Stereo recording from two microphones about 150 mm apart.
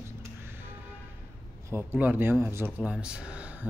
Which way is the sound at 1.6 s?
15° right (ahead or behind).